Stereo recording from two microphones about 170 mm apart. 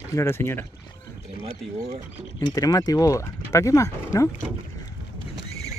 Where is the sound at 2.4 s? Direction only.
20° left (ahead or behind).